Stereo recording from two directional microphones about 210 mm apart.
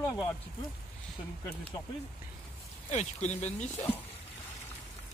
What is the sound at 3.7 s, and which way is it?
Speech, 10° left (ahead or behind).